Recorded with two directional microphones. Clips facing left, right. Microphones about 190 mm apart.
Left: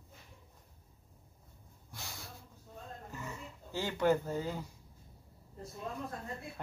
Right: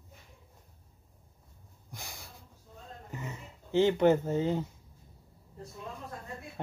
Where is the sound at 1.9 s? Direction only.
15° right (ahead or behind).